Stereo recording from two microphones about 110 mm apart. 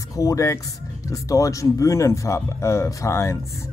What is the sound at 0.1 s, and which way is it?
Speech, 30° left (ahead or behind).